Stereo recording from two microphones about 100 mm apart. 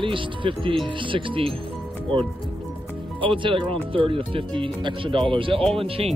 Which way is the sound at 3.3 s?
60° right (ahead or behind).